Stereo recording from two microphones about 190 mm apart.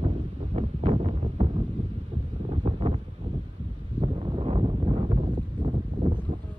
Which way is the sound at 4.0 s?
30° right (ahead or behind).